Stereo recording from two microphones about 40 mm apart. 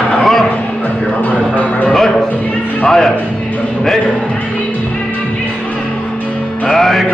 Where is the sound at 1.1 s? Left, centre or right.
Left.